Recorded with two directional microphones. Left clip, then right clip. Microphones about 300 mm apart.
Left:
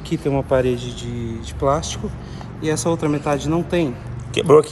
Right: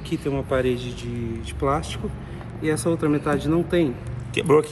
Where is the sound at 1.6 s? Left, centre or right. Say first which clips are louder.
Left 5 dB; left.